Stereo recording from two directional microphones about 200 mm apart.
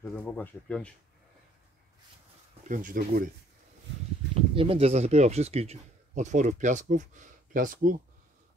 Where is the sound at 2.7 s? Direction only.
40° right (ahead or behind).